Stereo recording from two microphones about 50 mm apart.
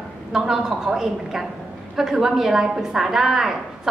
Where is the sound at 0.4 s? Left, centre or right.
Centre.